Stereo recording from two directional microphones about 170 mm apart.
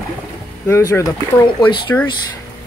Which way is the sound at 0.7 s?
15° left (ahead or behind).